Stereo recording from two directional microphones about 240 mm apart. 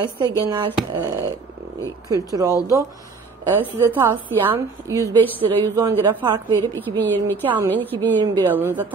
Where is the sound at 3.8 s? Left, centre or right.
Centre.